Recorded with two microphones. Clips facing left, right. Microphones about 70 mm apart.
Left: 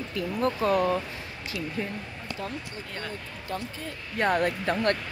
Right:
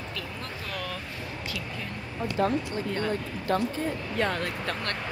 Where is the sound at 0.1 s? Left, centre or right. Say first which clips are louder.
Left 9 dB; left.